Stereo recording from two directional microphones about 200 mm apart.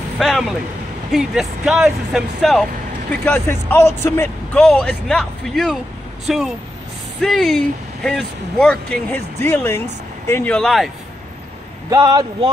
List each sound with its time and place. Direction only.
0.2 s speech: centre (ahead or behind)
11.9 s speech: 20° right (ahead or behind)